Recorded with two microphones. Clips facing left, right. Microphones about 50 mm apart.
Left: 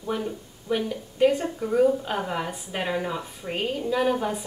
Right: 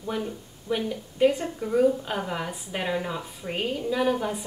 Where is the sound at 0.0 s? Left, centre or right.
Centre.